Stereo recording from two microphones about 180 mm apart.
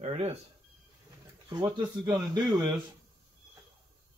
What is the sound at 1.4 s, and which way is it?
Speech, 25° right (ahead or behind).